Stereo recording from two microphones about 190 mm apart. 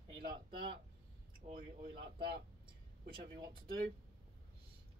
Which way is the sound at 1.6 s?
50° right (ahead or behind).